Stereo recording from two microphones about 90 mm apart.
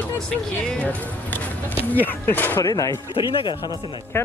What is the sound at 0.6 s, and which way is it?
Speech, 15° left (ahead or behind).